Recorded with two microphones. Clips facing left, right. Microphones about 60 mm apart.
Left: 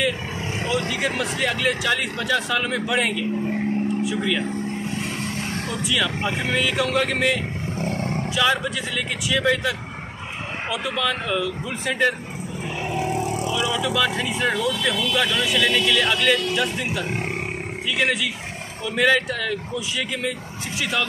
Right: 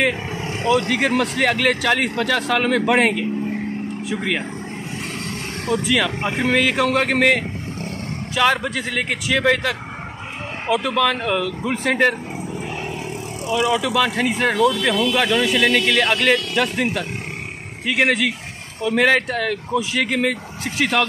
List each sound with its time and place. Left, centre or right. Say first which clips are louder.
0.7 s speech: right 7 dB; right
3.0 s speech: right 4 dB; right
5.7 s speech: right 6 dB; right
11.0 s speech: right 4 dB; right
13.5 s speech: right 9 dB; right